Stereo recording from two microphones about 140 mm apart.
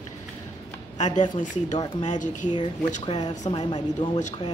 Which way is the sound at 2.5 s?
35° left (ahead or behind).